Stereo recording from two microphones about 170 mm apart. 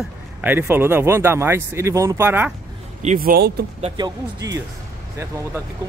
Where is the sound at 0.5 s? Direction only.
15° right (ahead or behind).